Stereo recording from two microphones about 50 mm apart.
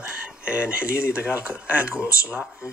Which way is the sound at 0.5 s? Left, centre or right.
Right.